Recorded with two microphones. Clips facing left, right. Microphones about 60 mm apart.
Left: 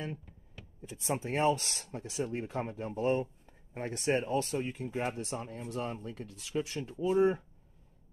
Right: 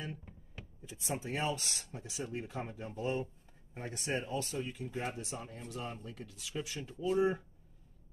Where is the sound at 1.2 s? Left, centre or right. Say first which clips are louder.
Left 8 dB; left.